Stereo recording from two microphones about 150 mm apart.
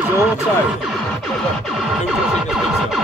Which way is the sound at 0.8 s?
Centre (ahead or behind).